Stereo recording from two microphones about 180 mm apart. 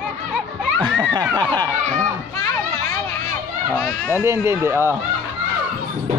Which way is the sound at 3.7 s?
15° left (ahead or behind).